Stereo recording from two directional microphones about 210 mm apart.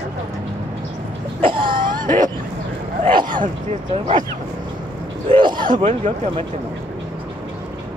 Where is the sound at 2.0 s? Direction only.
40° right (ahead or behind).